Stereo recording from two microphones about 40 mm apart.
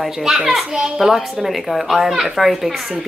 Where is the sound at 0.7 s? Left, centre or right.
Centre.